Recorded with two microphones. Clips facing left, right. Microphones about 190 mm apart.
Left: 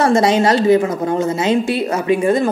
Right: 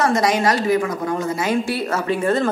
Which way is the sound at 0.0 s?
25° left (ahead or behind).